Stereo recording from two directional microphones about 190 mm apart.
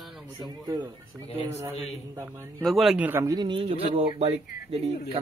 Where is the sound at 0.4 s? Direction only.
20° right (ahead or behind).